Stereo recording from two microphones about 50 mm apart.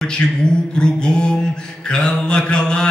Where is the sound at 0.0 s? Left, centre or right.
Centre.